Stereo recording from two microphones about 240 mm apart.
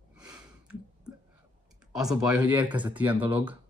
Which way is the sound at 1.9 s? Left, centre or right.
Centre.